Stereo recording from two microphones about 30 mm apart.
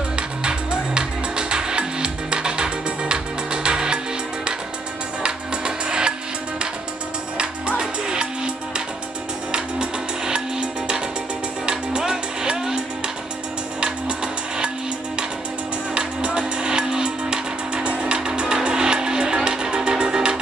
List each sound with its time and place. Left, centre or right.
0.1 s music: right
5.2 s music: right
7.3 s music: right
9.5 s music: right
15.9 s music: right